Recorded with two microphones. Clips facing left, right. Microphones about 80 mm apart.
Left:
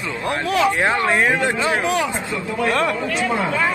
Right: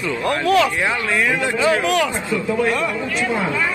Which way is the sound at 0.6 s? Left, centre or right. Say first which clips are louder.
Left 3 dB; left.